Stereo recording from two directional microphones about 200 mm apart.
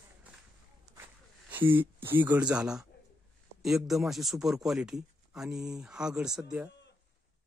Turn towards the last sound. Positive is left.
turn(degrees=-5)  # may be behind; listen again after turning